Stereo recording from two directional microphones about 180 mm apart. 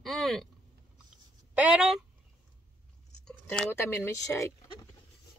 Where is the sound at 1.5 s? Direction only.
5° right (ahead or behind).